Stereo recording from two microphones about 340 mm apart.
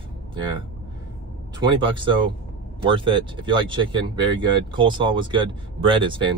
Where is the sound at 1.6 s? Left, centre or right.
Centre.